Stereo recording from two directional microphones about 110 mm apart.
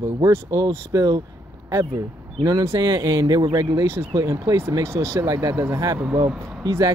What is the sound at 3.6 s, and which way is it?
Speech, 25° right (ahead or behind).